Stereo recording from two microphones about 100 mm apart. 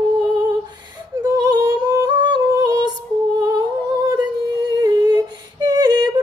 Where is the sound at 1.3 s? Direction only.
40° right (ahead or behind).